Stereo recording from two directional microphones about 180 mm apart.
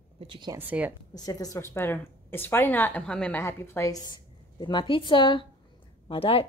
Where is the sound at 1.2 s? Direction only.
20° left (ahead or behind).